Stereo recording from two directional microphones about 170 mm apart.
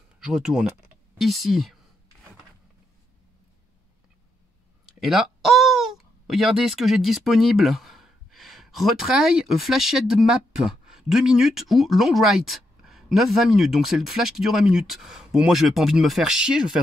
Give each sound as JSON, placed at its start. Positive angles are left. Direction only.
{"t": 0.2, "sound": "a woman's voice", "side_deg": -5}
{"t": 5.0, "sound": "speech", "side_deg": 0}